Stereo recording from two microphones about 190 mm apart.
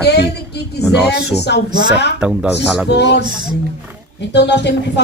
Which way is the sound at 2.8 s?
65° left (ahead or behind).